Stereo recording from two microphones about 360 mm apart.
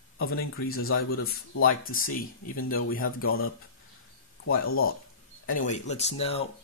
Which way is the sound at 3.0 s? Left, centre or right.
Left.